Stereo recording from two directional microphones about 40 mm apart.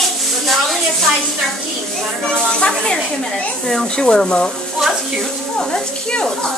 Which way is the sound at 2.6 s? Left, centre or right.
Centre.